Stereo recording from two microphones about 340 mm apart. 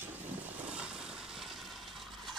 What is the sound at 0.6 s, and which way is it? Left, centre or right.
Vehicle, centre.